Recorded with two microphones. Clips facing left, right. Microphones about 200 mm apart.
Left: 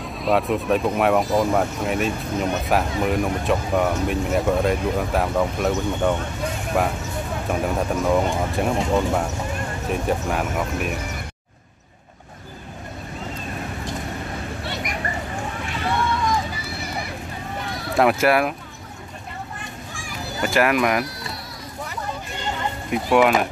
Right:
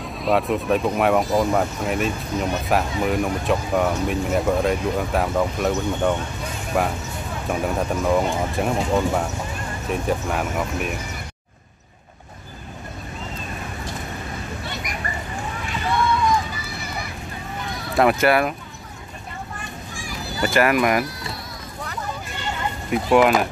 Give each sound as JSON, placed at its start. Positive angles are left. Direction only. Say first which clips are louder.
{"t": 0.0, "sound": "speech", "louder": "even", "side_deg": 0}
{"t": 14.6, "sound": "a sound", "louder": "left 2 dB", "side_deg": 65}
{"t": 17.9, "sound": "speech", "louder": "even", "side_deg": 0}
{"t": 20.4, "sound": "speech", "louder": "right 1 dB", "side_deg": 0}
{"t": 22.8, "sound": "speech", "louder": "right 1 dB", "side_deg": 0}